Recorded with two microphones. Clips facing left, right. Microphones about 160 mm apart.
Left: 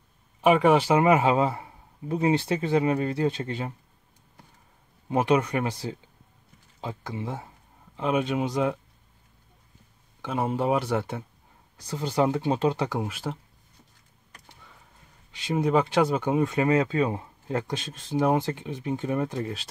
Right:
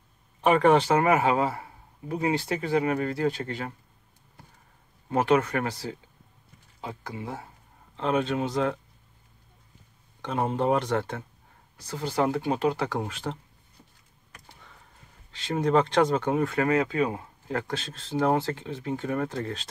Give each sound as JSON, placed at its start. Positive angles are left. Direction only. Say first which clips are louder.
{"t": 0.4, "sound": "speech", "louder": "left 1 dB", "side_deg": 5}
{"t": 1.0, "sound": "speech", "louder": "left 2 dB", "side_deg": 20}
{"t": 5.1, "sound": "speech", "louder": "even", "side_deg": 15}
{"t": 7.9, "sound": "speech", "louder": "even", "side_deg": 10}
{"t": 10.2, "sound": "speech", "louder": "even", "side_deg": 5}
{"t": 13.0, "sound": "speech", "louder": "left 1 dB", "side_deg": 5}
{"t": 15.3, "sound": "speech", "louder": "even", "side_deg": 10}